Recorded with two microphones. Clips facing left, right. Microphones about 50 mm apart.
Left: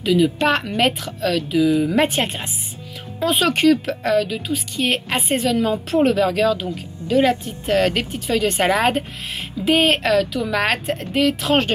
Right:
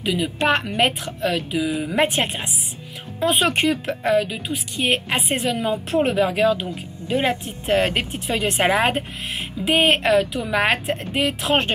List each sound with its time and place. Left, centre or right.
0.0 s a woman's voice: centre